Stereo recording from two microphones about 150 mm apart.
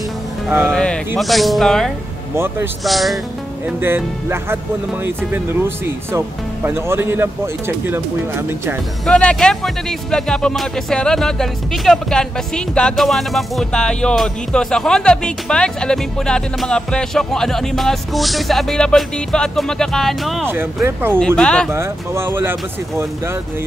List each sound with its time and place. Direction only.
0.7 s speech: 5° left (ahead or behind)
2.3 s speech: 15° right (ahead or behind)
2.8 s speech: centre (ahead or behind)
3.6 s speech: 15° right (ahead or behind)
9.0 s speech: 5° left (ahead or behind)
20.4 s speech: 15° right (ahead or behind)
21.4 s speech: 5° left (ahead or behind)
21.6 s speech: 15° right (ahead or behind)